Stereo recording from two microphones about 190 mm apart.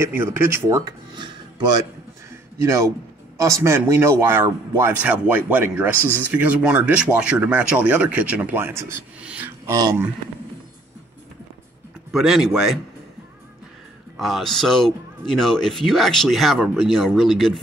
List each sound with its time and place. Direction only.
0.0 s speech: 10° right (ahead or behind)
12.1 s speech: centre (ahead or behind)
14.1 s speech: centre (ahead or behind)